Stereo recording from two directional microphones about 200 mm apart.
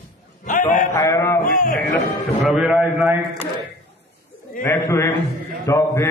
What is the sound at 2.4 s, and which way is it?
A man's voice, centre (ahead or behind).